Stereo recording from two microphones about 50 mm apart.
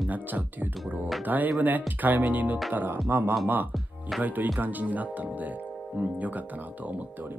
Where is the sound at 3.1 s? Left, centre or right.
Right.